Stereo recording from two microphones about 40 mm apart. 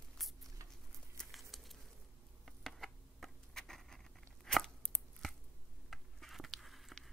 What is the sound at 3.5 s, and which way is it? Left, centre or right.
Patter, centre.